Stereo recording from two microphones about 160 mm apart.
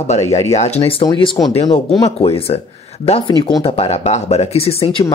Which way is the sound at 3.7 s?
40° left (ahead or behind).